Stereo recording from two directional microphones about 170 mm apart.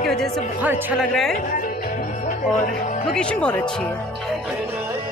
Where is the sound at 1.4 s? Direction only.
55° left (ahead or behind).